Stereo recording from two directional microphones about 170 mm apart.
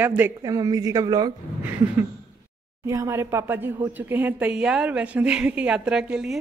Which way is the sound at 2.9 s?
15° right (ahead or behind).